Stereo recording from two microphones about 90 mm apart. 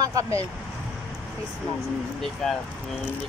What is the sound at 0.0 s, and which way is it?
Speech, 40° right (ahead or behind).